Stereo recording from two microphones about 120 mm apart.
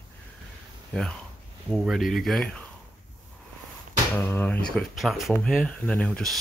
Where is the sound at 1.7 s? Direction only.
Centre (ahead or behind).